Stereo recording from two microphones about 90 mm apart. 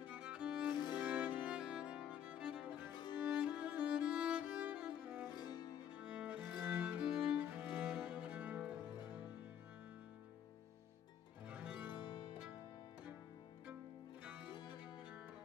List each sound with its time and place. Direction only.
0.0 s music: 15° right (ahead or behind)
0.7 s music: 55° left (ahead or behind)
1.0 s music: 15° right (ahead or behind)
5.3 s music: 50° left (ahead or behind)
5.9 s music: 15° right (ahead or behind)
11.4 s music: 15° right (ahead or behind)
11.9 s music: 60° left (ahead or behind)
14.2 s music: 15° right (ahead or behind)